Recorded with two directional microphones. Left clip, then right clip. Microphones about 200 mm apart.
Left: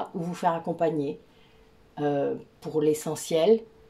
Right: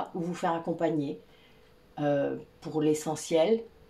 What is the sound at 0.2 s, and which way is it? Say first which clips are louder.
Speech: left 4 dB; 40° left (ahead or behind).